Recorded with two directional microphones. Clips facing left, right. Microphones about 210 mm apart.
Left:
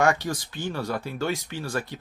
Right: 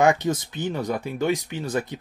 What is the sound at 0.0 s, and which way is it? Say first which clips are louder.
Speech: right 4 dB; 20° right (ahead or behind).